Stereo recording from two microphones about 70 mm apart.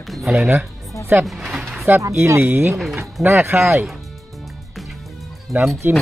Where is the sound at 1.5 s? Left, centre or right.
Centre.